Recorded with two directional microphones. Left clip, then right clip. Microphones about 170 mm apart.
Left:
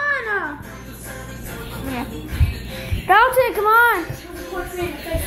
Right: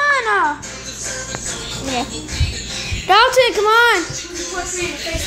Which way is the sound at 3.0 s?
25° right (ahead or behind).